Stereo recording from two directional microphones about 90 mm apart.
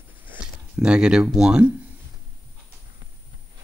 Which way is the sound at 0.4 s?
10° right (ahead or behind).